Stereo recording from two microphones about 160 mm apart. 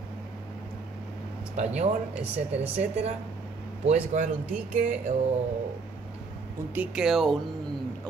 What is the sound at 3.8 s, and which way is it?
Speech, 50° right (ahead or behind).